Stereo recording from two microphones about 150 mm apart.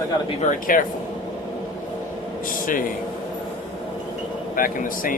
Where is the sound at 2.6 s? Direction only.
65° left (ahead or behind).